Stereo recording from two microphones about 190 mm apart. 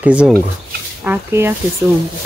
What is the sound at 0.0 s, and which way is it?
Speech, 5° right (ahead or behind).